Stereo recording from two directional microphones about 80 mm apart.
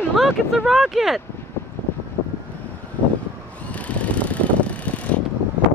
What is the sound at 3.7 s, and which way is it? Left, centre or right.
Vehicle, centre.